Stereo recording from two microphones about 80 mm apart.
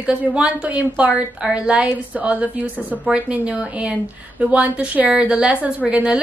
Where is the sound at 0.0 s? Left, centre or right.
Centre.